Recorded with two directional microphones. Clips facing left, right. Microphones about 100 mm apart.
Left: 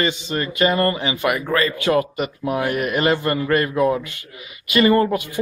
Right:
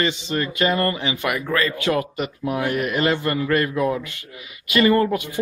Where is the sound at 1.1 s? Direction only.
45° left (ahead or behind).